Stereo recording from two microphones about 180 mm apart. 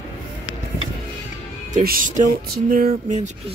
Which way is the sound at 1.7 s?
50° right (ahead or behind).